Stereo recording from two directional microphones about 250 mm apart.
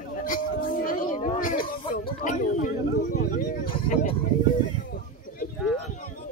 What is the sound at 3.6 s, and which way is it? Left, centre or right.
Vehicle, left.